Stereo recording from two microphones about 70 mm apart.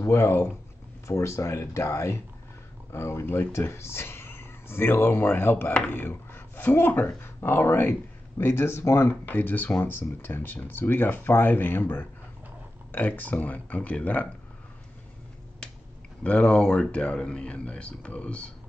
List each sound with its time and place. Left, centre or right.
0.0 s speech: left; by 14.2 s centre
16.3 s speech: centre